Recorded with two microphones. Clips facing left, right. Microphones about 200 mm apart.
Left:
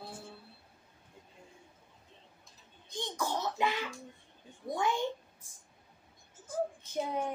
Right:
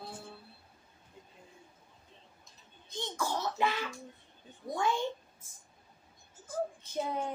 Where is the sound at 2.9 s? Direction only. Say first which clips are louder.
Even; 20° left (ahead or behind).